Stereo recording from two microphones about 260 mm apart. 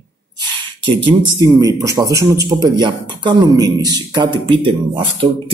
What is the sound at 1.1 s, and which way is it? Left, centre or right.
Speech, centre.